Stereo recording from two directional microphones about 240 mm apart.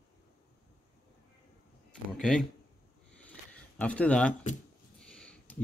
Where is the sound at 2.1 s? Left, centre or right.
Centre.